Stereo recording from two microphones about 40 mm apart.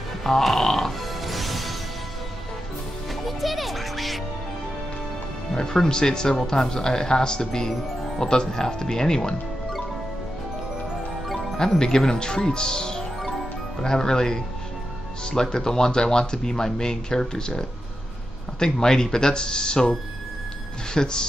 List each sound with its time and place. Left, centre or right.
0.2 s music: centre
3.3 s music: centre
5.5 s speech: centre
11.2 s music: centre
11.5 s speech: centre
20.9 s speech: centre